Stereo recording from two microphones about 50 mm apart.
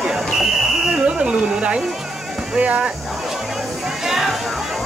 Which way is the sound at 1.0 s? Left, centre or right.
Right.